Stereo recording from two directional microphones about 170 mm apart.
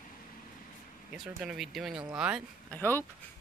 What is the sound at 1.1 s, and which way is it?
Speech, 5° right (ahead or behind).